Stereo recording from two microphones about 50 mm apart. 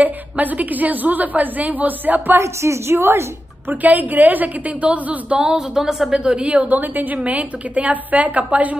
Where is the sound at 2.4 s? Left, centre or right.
Right.